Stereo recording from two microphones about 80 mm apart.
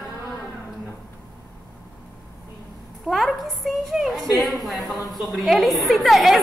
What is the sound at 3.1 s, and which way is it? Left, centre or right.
A woman's voice, centre.